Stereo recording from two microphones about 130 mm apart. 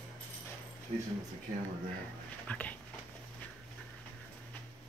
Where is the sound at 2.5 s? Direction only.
10° left (ahead or behind).